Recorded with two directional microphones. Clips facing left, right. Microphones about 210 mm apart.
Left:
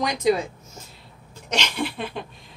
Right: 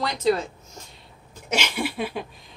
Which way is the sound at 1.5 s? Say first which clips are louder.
Even; 10° right (ahead or behind).